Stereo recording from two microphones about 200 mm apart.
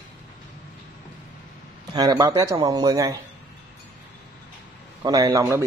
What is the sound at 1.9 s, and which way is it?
Speech, 20° right (ahead or behind).